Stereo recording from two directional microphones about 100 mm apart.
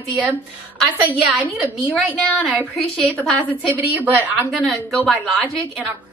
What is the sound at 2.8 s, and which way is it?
Speech, 15° left (ahead or behind).